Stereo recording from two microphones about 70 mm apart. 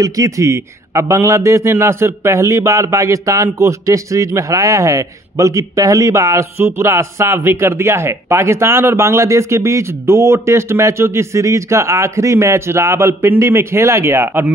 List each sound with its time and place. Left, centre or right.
0.0 s a man's voice: right